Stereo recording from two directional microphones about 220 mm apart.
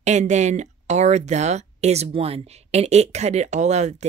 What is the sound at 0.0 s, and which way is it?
Speech, 30° right (ahead or behind).